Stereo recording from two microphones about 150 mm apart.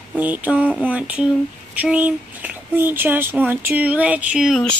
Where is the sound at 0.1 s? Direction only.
10° right (ahead or behind).